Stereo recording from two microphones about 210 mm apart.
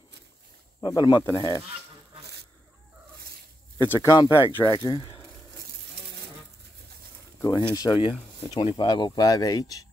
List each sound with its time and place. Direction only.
0.7 s speech: 20° left (ahead or behind)
3.7 s speech: 15° left (ahead or behind)
7.4 s speech: 20° left (ahead or behind)